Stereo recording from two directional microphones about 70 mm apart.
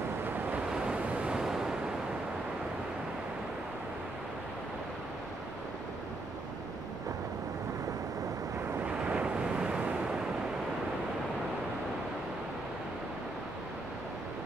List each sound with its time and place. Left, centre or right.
0.7 s waves: centre
8.7 s waves: right